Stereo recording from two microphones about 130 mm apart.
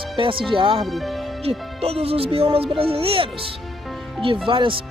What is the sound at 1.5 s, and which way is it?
Speech, 50° right (ahead or behind).